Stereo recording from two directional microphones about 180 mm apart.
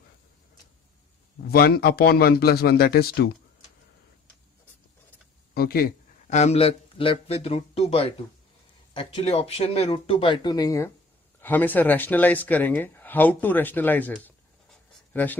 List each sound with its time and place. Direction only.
1.5 s speech: 60° left (ahead or behind)
5.5 s a sound: 55° left (ahead or behind)
6.3 s speech: 35° left (ahead or behind); by 15.3 s 10° left (ahead or behind)